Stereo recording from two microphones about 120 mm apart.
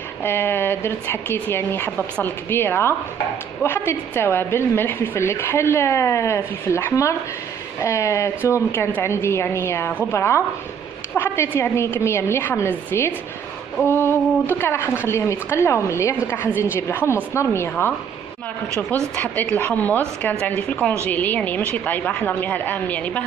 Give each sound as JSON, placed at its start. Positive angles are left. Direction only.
{"t": 0.2, "sound": "a woman's voice", "side_deg": 20}
{"t": 11.5, "sound": "a woman's voice", "side_deg": 20}
{"t": 19.1, "sound": "a woman's voice", "side_deg": 15}